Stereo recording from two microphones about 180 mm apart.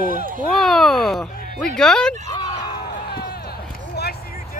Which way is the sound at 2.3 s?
20° left (ahead or behind).